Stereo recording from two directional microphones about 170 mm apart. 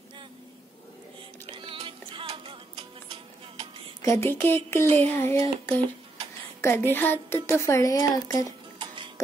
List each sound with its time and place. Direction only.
1.5 s music: 30° right (ahead or behind)
4.0 s speech: 15° left (ahead or behind)
8.7 s music: 30° right (ahead or behind)